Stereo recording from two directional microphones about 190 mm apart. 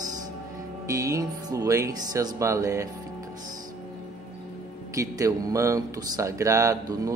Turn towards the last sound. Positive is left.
turn(degrees=-20)  # may be behind; listen again after turning